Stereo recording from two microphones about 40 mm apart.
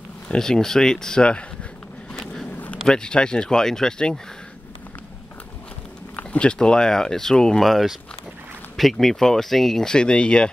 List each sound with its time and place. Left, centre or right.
0.4 s speech: centre
2.5 s a sound: left
2.9 s speech: centre
6.4 s speech: centre
7.6 s speech: centre
9.8 s speech: left